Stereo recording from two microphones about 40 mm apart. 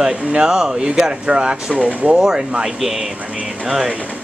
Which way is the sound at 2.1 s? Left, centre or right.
Centre.